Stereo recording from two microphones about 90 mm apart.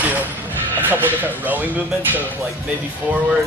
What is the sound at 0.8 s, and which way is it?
Speech, 20° right (ahead or behind).